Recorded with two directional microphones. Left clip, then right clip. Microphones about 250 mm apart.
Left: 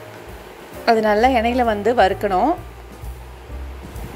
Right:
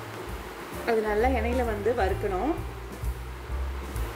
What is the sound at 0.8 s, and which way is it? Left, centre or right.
A woman's voice, left.